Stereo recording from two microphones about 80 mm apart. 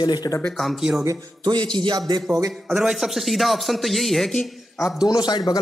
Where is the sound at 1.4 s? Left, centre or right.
Right.